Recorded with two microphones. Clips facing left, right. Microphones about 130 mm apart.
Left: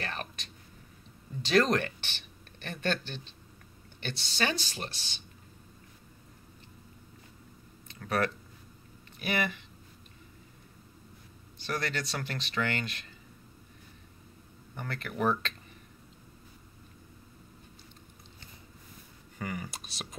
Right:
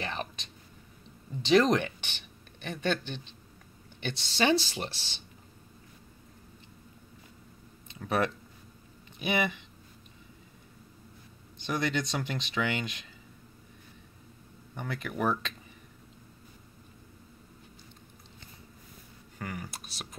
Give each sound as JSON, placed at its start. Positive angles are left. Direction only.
{"t": 0.0, "sound": "a sound", "side_deg": -20}
{"t": 1.4, "sound": "speech", "side_deg": -20}
{"t": 7.9, "sound": "speech", "side_deg": -20}
{"t": 11.5, "sound": "speech", "side_deg": -20}
{"t": 14.8, "sound": "speech", "side_deg": -10}
{"t": 19.3, "sound": "speech", "side_deg": 0}